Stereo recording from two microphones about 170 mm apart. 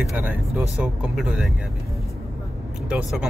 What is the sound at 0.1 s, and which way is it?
Speech, 10° right (ahead or behind).